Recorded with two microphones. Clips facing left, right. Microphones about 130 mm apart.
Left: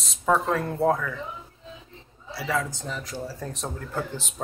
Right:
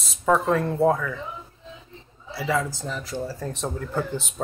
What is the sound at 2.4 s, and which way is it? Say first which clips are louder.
A man's voice: right 3 dB; centre (ahead or behind).